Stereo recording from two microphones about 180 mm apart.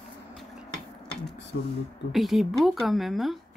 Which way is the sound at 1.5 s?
70° left (ahead or behind).